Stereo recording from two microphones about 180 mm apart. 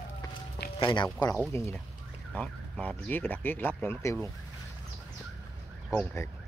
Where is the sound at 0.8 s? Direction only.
25° left (ahead or behind).